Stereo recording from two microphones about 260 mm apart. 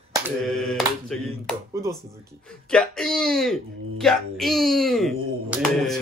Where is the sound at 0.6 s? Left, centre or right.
Centre.